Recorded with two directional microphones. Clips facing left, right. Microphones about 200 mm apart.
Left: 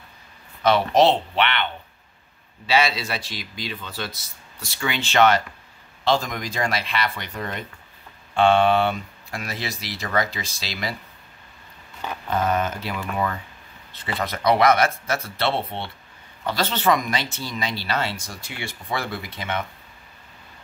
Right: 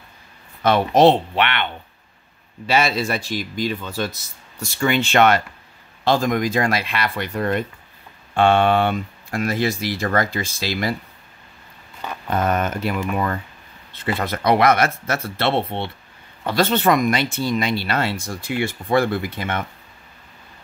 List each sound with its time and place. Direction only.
0.7 s speech: 55° right (ahead or behind)
12.3 s speech: 55° right (ahead or behind)